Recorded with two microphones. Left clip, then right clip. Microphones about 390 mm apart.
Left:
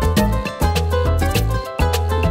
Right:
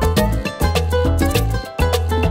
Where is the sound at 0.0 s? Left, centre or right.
Right.